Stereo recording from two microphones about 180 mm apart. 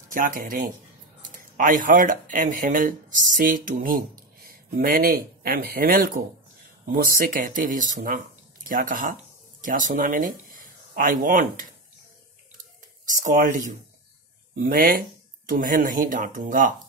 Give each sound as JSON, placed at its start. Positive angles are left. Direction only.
{"t": 0.1, "sound": "speech", "side_deg": -50}
{"t": 13.1, "sound": "speech", "side_deg": -45}